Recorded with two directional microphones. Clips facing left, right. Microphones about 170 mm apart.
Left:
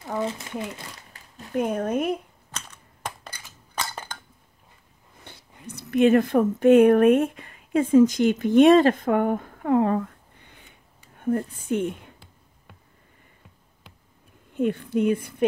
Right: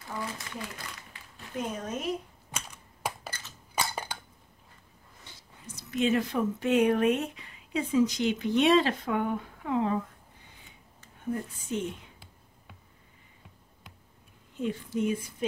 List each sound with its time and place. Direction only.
0.2 s speech: 25° left (ahead or behind)
1.1 s a sound: 40° left (ahead or behind)
1.5 s a woman's voice: 60° left (ahead or behind)
2.5 s computer keyboard: 10° right (ahead or behind)
3.3 s crushing: 15° left (ahead or behind)
3.7 s a sound: 10° right (ahead or behind)
5.2 s speech: 60° left (ahead or behind)
11.1 s speech: 55° left (ahead or behind)
14.5 s a woman's voice: 60° left (ahead or behind)